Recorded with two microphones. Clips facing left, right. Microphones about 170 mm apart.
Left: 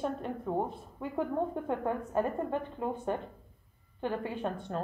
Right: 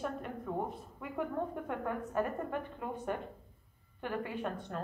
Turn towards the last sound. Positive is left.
turn(degrees=30)  # may be behind; listen again after turning